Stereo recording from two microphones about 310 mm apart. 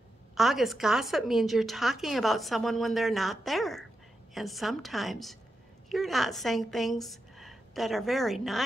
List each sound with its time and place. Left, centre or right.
0.3 s a woman's voice: centre